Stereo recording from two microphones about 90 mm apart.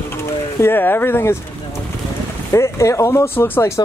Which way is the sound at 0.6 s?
25° left (ahead or behind).